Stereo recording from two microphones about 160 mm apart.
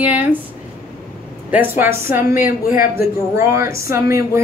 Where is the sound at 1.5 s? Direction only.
10° right (ahead or behind).